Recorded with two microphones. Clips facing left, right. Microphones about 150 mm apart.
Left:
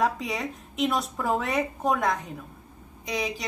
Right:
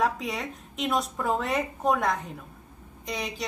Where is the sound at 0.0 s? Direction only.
Centre (ahead or behind).